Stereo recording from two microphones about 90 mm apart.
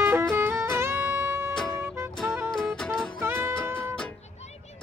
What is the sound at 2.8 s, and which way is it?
Music, 5° left (ahead or behind).